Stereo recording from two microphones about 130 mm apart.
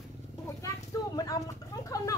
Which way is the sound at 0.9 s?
25° left (ahead or behind).